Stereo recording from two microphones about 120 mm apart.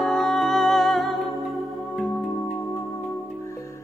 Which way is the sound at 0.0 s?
5° left (ahead or behind).